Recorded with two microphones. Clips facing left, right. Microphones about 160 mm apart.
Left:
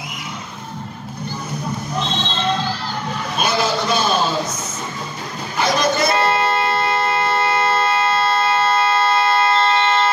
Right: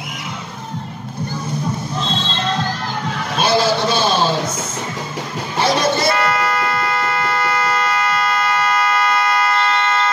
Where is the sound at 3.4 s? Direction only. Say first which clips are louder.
Right 4 dB; 30° right (ahead or behind).